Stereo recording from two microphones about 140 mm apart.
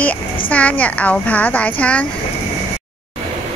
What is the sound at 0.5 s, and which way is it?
Speech, 10° left (ahead or behind).